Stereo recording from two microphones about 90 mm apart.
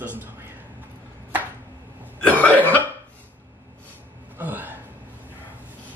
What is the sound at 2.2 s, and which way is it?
Cough, 20° left (ahead or behind).